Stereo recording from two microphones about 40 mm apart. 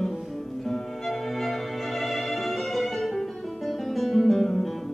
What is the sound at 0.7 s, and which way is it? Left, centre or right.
Music, centre.